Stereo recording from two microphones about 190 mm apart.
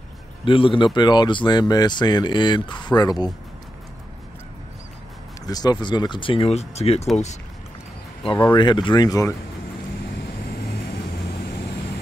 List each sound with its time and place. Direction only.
0.5 s speech: 25° left (ahead or behind)
5.5 s speech: 20° left (ahead or behind)
8.5 s speech: 25° left (ahead or behind)
10.3 s vehicle: 55° left (ahead or behind)